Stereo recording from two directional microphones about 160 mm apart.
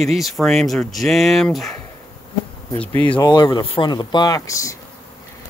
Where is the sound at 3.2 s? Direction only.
25° left (ahead or behind).